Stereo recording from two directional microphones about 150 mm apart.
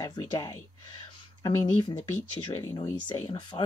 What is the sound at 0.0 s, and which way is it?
Speech, 20° left (ahead or behind).